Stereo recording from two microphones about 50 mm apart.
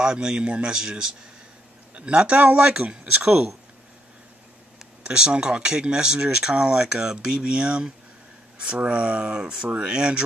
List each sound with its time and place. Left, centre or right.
0.0 s speech: centre
2.0 s a man's voice: right
5.0 s a man's voice: centre